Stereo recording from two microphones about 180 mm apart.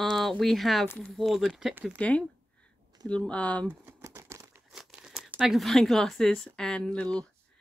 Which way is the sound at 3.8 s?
15° right (ahead or behind).